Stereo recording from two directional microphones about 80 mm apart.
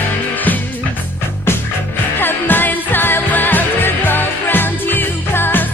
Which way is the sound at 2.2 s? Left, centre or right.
Left.